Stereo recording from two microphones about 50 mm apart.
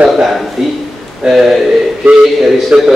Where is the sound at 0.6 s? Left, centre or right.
Centre.